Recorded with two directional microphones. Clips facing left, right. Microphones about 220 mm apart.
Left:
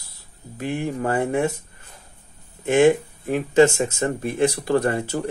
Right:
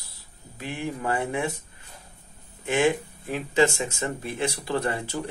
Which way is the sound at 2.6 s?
50° left (ahead or behind).